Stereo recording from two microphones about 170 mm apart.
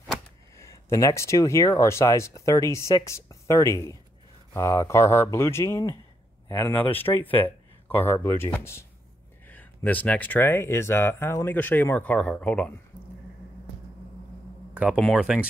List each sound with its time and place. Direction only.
0.6 s speech: 20° left (ahead or behind)
14.7 s speech: 5° right (ahead or behind)